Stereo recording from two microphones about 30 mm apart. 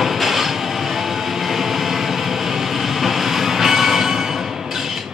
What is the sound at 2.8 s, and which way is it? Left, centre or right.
Train, centre.